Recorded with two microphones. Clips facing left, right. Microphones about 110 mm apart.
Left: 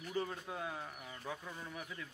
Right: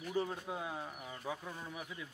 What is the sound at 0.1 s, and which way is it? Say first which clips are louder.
A man's voice: right 3 dB; 10° right (ahead or behind).